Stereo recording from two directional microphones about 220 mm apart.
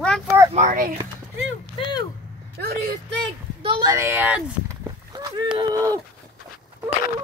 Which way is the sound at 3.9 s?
10° right (ahead or behind).